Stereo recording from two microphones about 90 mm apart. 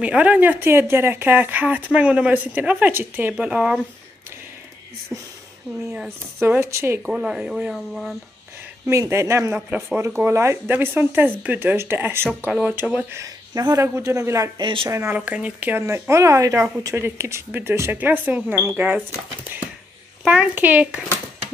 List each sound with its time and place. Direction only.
0.0 s speech: 15° right (ahead or behind)
3.3 s speech: 10° right (ahead or behind)
5.1 s speech: 30° right (ahead or behind)
7.0 s speech: 5° right (ahead or behind)
9.0 s speech: 35° right (ahead or behind); by 13.0 s 15° right (ahead or behind)
13.1 s speech: 40° right (ahead or behind)
14.6 s speech: 70° right (ahead or behind)
14.9 s speech: 30° right (ahead or behind)
15.1 s speech: 15° right (ahead or behind)
15.8 s speech: 30° right (ahead or behind); by 21.0 s 15° right (ahead or behind)